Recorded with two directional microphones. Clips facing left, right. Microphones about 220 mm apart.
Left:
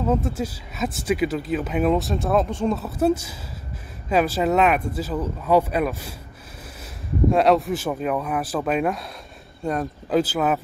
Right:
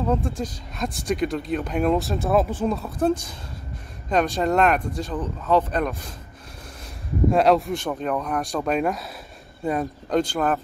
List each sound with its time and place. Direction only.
0.0 s speech: 5° left (ahead or behind)
7.2 s speech: centre (ahead or behind)